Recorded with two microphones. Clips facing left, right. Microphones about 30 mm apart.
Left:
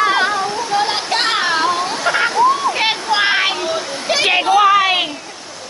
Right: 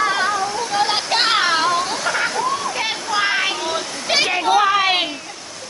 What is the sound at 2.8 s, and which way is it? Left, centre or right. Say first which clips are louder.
Waterfall: left 5 dB; left.